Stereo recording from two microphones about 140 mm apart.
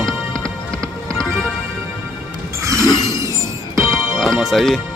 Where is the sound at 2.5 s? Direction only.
20° right (ahead or behind).